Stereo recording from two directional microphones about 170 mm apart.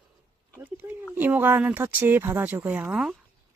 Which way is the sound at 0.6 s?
10° right (ahead or behind).